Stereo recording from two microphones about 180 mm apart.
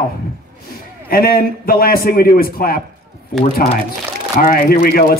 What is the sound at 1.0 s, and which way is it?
A man's voice, 55° left (ahead or behind).